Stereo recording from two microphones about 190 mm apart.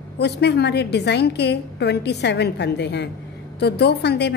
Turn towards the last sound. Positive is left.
turn(degrees=60)  # may be behind; listen again after turning